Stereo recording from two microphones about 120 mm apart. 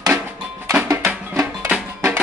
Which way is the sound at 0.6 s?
25° right (ahead or behind).